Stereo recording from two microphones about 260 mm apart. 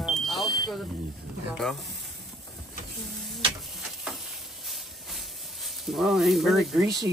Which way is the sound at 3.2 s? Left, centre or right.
Centre.